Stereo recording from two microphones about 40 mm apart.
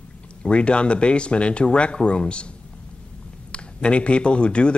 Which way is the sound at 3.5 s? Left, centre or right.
Left.